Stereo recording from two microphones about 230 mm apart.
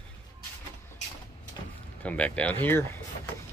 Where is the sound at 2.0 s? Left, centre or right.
Centre.